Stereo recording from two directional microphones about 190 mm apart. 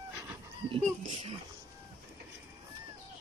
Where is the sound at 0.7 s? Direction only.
30° right (ahead or behind).